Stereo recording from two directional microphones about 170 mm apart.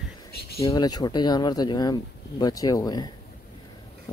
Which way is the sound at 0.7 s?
25° left (ahead or behind).